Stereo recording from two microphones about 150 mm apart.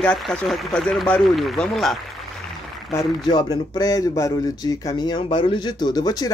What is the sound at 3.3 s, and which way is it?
Speech, 25° left (ahead or behind).